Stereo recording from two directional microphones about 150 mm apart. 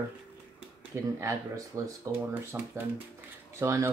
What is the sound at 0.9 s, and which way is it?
Speech, 20° right (ahead or behind).